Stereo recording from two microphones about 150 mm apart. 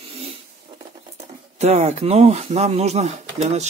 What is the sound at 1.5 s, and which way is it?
Speech, 45° right (ahead or behind).